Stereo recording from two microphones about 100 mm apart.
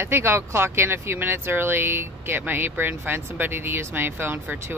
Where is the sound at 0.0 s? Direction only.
25° right (ahead or behind).